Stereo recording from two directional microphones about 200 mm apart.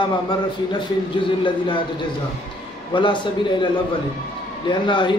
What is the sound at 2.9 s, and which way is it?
Speech, 25° left (ahead or behind).